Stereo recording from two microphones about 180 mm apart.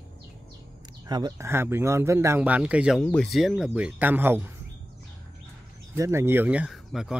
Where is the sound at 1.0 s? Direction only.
20° right (ahead or behind); by 3.0 s 5° right (ahead or behind).